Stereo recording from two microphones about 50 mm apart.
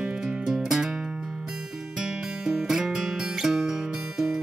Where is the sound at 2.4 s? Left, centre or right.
Centre.